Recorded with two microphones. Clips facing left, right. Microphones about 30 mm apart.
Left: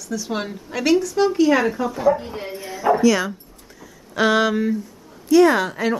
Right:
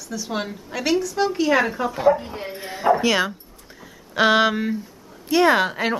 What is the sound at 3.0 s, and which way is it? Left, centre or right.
A woman's voice, right.